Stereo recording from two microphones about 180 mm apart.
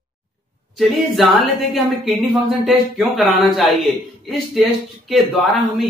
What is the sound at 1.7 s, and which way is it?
Speech, centre (ahead or behind).